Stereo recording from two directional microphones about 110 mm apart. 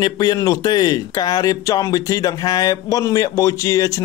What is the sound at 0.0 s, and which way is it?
Speech, 35° left (ahead or behind).